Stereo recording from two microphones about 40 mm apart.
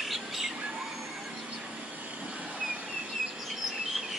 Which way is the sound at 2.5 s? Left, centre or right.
Right.